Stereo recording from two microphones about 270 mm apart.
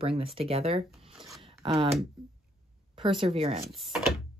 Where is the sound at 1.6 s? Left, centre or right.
Right.